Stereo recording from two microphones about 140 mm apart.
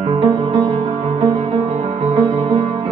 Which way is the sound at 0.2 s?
30° right (ahead or behind).